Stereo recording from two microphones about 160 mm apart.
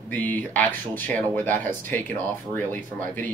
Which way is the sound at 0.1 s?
10° left (ahead or behind).